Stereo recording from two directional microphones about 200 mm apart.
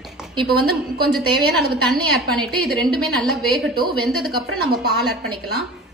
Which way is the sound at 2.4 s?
Centre (ahead or behind).